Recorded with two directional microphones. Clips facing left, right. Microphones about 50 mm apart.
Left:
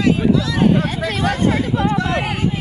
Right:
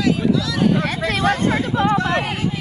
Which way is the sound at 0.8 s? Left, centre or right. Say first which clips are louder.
Right 1 dB; right.